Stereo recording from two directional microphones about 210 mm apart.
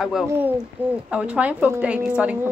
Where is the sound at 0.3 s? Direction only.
10° right (ahead or behind).